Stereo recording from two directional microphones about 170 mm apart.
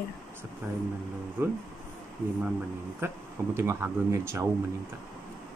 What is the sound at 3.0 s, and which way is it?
Speech, 15° right (ahead or behind).